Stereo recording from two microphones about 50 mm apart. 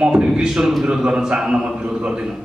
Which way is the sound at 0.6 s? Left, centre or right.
Centre.